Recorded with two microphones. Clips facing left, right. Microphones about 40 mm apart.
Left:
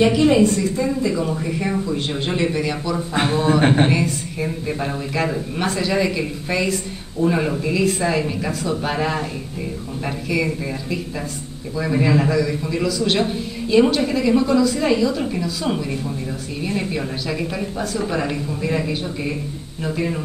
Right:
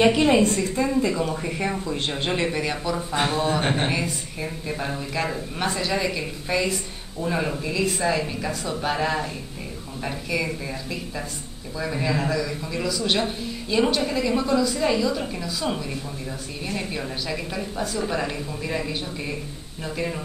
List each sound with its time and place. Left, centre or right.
0.0 s a woman's voice: right
0.4 s a woman's voice: right
1.0 s speech: centre
3.2 s a man's voice: left
4.4 s a woman's voice: centre